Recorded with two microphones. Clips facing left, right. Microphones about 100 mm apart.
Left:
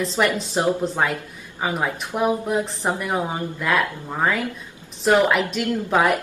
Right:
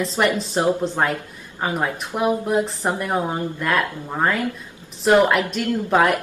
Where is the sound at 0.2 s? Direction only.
Centre (ahead or behind).